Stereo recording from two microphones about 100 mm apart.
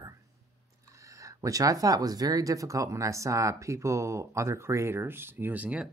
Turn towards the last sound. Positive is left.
turn(degrees=-15)  # may be behind; listen again after turning